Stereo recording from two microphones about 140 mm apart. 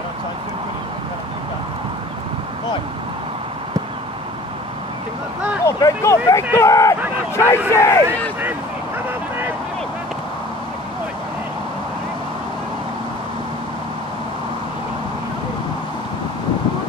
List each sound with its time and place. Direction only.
5.7 s speech: 20° left (ahead or behind)